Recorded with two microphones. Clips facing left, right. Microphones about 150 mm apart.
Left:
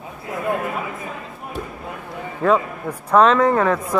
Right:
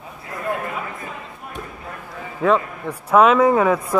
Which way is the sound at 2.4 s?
10° left (ahead or behind).